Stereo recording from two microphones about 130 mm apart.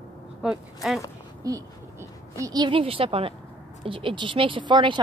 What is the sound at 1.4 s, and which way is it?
A woman's voice, 25° right (ahead or behind).